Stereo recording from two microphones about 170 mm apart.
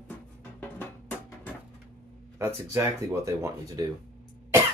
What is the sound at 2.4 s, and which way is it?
Speech, 20° right (ahead or behind).